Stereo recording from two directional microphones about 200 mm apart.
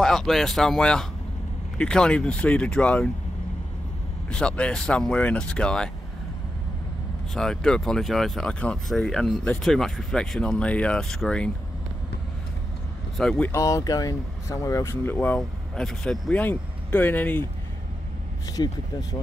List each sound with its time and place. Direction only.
0.0 s speech: centre (ahead or behind)
4.3 s speech: 5° left (ahead or behind)
7.3 s speech: 5° left (ahead or behind)
13.2 s speech: 5° left (ahead or behind)
18.6 s speech: 20° left (ahead or behind)